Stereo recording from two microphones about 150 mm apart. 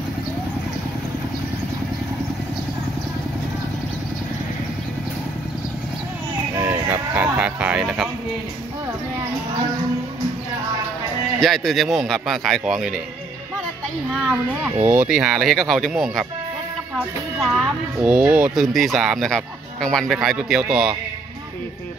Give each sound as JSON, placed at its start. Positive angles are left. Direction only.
{"t": 6.5, "sound": "a sound", "side_deg": -15}
{"t": 11.4, "sound": "speech", "side_deg": 0}
{"t": 14.1, "sound": "speech", "side_deg": -5}
{"t": 14.8, "sound": "speech", "side_deg": -20}
{"t": 15.0, "sound": "speech", "side_deg": -5}
{"t": 17.4, "sound": "speech", "side_deg": 0}